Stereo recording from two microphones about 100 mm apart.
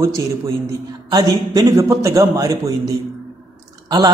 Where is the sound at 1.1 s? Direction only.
40° right (ahead or behind).